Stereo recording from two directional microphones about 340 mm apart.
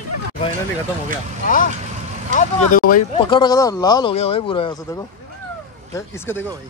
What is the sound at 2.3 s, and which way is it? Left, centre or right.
Vehicle, left.